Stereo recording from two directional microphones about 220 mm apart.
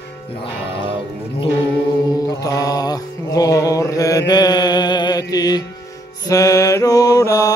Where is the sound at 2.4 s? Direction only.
15° left (ahead or behind).